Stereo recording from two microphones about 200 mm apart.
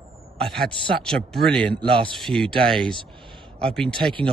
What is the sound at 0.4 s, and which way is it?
Speech, centre (ahead or behind).